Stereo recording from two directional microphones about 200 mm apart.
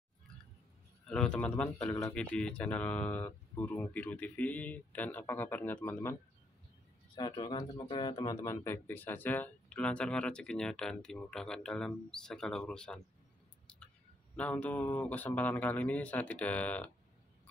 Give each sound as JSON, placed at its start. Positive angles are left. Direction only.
{"t": 1.0, "sound": "speech", "side_deg": 5}
{"t": 7.2, "sound": "speech", "side_deg": 20}
{"t": 13.7, "sound": "whispering", "side_deg": 5}
{"t": 14.3, "sound": "speech", "side_deg": 5}